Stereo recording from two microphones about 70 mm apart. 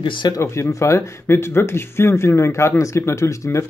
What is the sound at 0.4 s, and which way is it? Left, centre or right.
Speech, left.